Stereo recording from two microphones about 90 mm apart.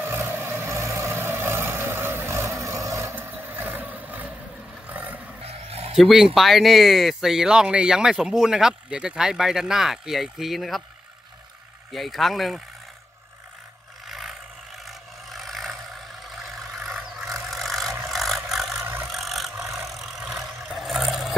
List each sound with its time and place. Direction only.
0.0 s vehicle: 25° right (ahead or behind)
3.2 s vehicle: 20° right (ahead or behind)
4.8 s a sound: 15° right (ahead or behind)
5.4 s a sound: 90° right
5.9 s speech: 5° right (ahead or behind)
11.9 s speech: centre (ahead or behind)
14.0 s vehicle: centre (ahead or behind)